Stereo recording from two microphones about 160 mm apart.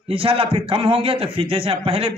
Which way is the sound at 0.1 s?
35° right (ahead or behind).